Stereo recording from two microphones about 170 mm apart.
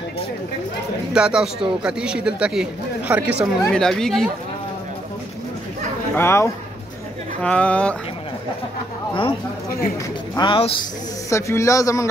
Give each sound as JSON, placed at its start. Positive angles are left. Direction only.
{"t": 1.1, "sound": "a man's voice", "side_deg": -5}
{"t": 3.6, "sound": "a man's voice", "side_deg": 5}
{"t": 6.1, "sound": "speech", "side_deg": 15}
{"t": 10.3, "sound": "a man's voice", "side_deg": 30}
{"t": 11.2, "sound": "a man's voice", "side_deg": 15}